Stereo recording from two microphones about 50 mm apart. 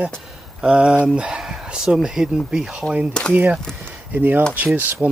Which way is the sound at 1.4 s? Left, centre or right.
Centre.